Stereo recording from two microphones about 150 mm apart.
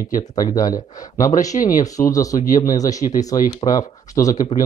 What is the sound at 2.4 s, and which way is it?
Speech, 65° left (ahead or behind).